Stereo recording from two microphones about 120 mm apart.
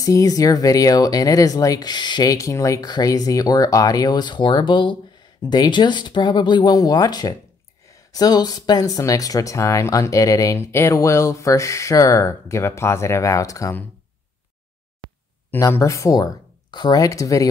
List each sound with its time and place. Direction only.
0.0 s speech: 30° left (ahead or behind)
15.5 s speech: 25° left (ahead or behind)